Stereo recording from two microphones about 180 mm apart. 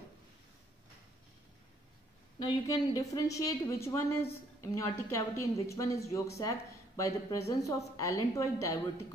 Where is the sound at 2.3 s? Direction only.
25° left (ahead or behind).